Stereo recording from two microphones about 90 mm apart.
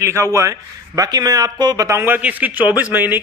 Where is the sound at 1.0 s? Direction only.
45° right (ahead or behind).